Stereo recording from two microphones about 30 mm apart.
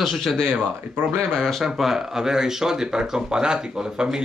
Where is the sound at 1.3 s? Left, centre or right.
Centre.